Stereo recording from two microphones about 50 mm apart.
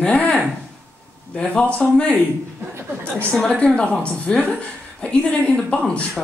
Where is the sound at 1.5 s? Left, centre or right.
Left.